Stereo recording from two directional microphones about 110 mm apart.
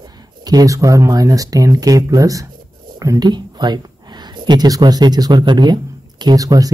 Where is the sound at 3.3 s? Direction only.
40° right (ahead or behind).